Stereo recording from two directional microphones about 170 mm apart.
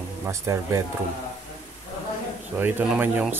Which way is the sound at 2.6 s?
10° right (ahead or behind).